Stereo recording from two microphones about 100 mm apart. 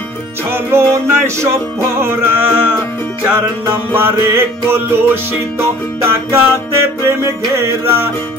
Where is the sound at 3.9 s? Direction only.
25° right (ahead or behind).